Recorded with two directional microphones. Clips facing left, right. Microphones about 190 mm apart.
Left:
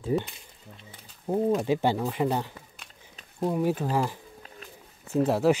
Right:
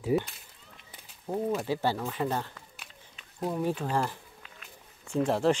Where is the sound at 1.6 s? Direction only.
15° left (ahead or behind).